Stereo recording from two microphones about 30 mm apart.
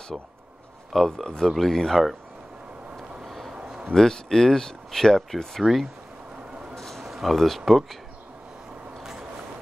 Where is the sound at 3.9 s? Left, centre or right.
Centre.